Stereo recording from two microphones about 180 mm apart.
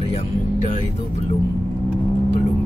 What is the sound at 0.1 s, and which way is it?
Music, 40° left (ahead or behind).